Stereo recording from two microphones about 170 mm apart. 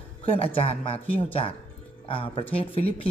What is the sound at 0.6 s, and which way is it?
A man's voice, 35° left (ahead or behind).